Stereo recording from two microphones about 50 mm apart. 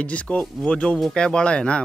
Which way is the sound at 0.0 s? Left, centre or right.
Left.